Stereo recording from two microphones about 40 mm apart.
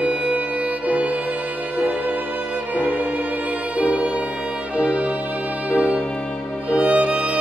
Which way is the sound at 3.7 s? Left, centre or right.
Right.